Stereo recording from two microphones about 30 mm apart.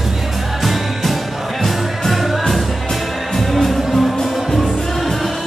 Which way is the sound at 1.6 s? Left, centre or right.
Centre.